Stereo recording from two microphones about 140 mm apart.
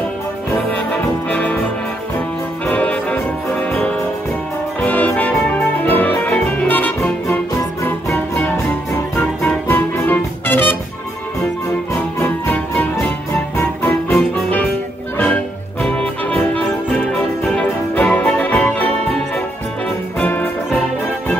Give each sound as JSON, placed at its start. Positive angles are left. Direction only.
{"t": 1.3, "sound": "music", "side_deg": 10}
{"t": 2.6, "sound": "music", "side_deg": 10}
{"t": 4.8, "sound": "music", "side_deg": 10}
{"t": 11.9, "sound": "music", "side_deg": 15}
{"t": 15.8, "sound": "music", "side_deg": 10}
{"t": 20.2, "sound": "music", "side_deg": 10}